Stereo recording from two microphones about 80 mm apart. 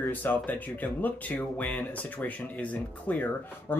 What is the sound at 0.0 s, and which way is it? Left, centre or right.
Speech, left.